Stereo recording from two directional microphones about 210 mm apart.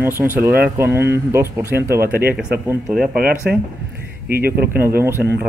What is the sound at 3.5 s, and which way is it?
Speech, 50° right (ahead or behind).